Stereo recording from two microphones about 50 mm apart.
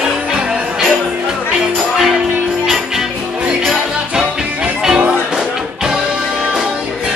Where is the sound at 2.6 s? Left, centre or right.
Centre.